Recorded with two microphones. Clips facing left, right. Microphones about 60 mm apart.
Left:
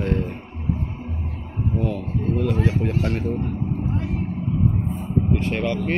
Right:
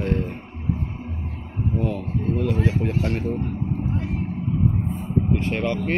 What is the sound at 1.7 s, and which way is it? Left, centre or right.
Speech, right.